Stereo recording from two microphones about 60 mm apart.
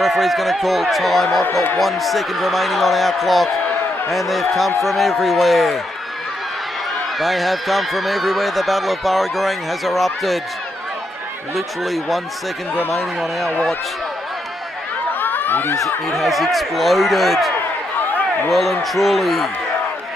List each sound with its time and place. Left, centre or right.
0.0 s speech: centre
7.2 s speech: centre
11.5 s speech: centre
15.1 s a sound: left
16.1 s speech: centre